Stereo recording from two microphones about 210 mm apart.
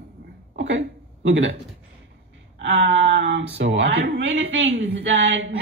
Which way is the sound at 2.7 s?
55° right (ahead or behind).